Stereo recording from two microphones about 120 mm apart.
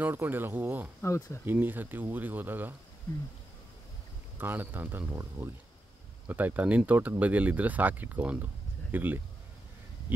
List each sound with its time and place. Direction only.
0.0 s speech: 15° right (ahead or behind)
1.0 s speech: 20° left (ahead or behind)
1.4 s speech: 15° right (ahead or behind)
4.4 s speech: 15° right (ahead or behind)